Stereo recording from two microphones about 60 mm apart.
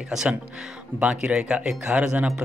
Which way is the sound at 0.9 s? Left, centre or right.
Right.